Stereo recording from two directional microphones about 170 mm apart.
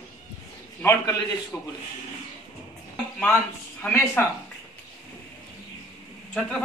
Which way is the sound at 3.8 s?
10° left (ahead or behind).